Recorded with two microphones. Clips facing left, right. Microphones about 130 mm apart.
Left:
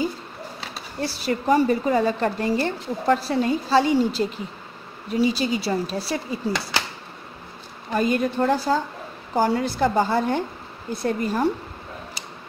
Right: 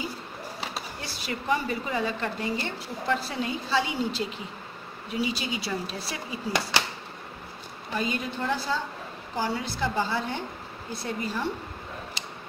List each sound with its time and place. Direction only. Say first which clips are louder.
1.0 s a woman's voice: left 9 dB; 40° left (ahead or behind)
7.9 s a woman's voice: left 8 dB; 45° left (ahead or behind)